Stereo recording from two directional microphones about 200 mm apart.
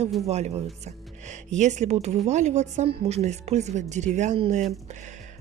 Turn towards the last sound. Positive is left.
turn(degrees=-35)  # may be behind; listen again after turning